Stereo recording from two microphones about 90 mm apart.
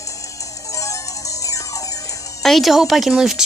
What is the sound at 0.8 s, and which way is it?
Music, 40° left (ahead or behind).